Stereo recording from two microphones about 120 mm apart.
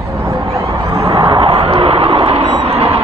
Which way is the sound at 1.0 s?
50° right (ahead or behind).